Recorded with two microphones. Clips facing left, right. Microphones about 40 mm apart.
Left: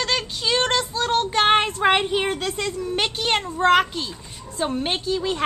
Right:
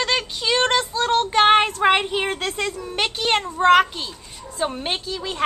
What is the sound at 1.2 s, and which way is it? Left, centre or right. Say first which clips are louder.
Child singing: right 4 dB; centre.